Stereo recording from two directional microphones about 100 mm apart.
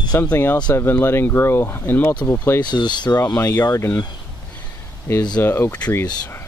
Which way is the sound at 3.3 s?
25° left (ahead or behind).